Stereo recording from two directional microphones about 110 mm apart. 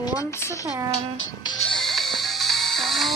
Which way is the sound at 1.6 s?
5° left (ahead or behind).